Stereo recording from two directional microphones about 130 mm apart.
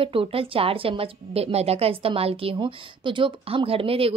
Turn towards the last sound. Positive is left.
turn(degrees=-45)  # may be behind; listen again after turning